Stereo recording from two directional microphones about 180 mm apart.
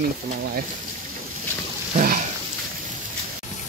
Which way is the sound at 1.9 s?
45° right (ahead or behind).